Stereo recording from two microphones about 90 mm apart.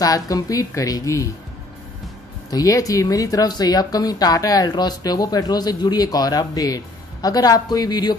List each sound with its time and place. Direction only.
0.0 s speech: 40° left (ahead or behind)
2.5 s speech: 40° left (ahead or behind)